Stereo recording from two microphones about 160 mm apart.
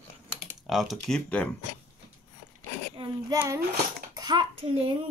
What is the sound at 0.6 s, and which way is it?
Speech, centre (ahead or behind).